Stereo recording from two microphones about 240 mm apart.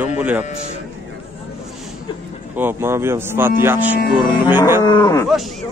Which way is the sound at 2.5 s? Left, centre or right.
Centre.